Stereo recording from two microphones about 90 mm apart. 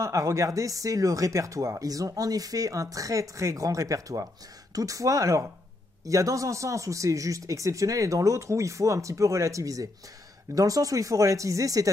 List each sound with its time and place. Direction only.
0.0 s speech: 35° right (ahead or behind)